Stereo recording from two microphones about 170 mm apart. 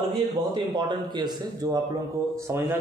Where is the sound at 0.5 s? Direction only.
25° right (ahead or behind).